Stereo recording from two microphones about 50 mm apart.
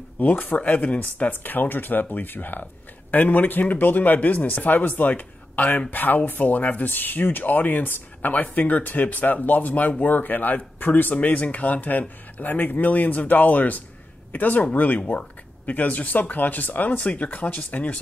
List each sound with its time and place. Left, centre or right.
0.2 s speech: left